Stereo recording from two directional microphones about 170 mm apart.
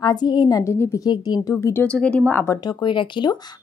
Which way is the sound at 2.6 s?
30° left (ahead or behind).